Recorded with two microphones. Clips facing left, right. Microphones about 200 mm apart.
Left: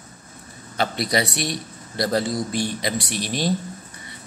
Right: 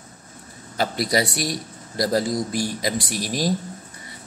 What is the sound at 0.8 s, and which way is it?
Speech, 40° right (ahead or behind).